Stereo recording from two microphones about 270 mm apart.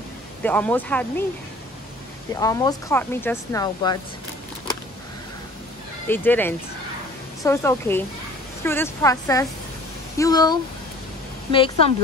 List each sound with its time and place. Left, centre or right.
0.4 s speech: centre
2.3 s speech: centre
6.0 s a woman's voice: centre